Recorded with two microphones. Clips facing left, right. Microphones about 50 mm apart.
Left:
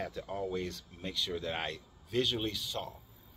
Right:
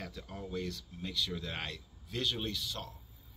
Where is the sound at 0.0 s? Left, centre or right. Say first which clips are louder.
Left 7 dB; left.